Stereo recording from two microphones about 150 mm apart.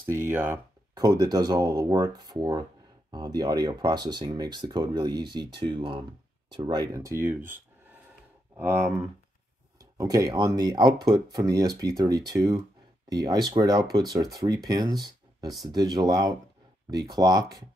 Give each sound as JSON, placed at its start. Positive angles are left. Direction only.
{"t": 0.1, "sound": "speech", "side_deg": -15}